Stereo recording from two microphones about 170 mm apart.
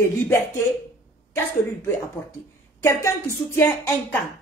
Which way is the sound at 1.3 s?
15° left (ahead or behind).